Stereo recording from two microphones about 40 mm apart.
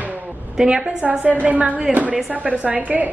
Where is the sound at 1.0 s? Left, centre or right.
Right.